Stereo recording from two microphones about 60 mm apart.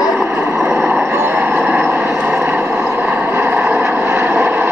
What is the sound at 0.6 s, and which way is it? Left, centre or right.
Vehicle, right.